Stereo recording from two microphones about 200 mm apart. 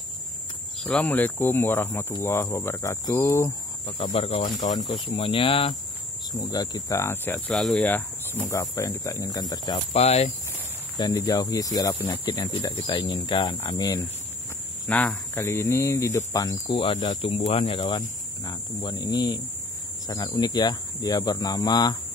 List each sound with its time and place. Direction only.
0.8 s speech: 5° left (ahead or behind)
3.8 s speech: 25° left (ahead or behind)
9.9 s speech: 30° left (ahead or behind)
11.0 s speech: 20° left (ahead or behind)
14.9 s speech: 10° left (ahead or behind)
16.7 s speech: 30° left (ahead or behind)